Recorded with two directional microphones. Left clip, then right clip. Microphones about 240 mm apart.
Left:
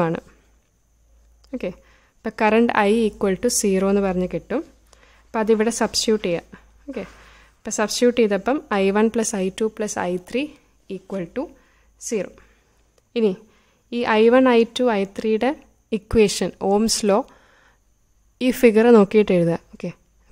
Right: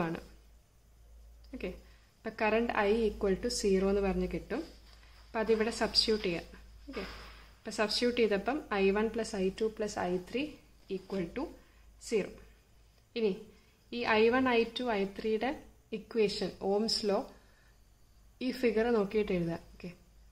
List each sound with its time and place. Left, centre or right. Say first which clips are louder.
1.5 s a woman's voice: left 13 dB; left
7.6 s a woman's voice: left 12 dB; left
18.4 s a woman's voice: left 15 dB; left